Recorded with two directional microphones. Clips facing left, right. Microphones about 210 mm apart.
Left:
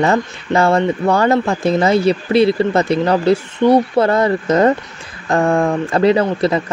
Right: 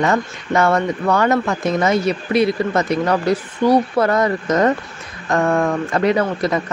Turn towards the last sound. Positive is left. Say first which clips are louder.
# left 3 dB
turn(degrees=30)  # may be behind; listen again after turning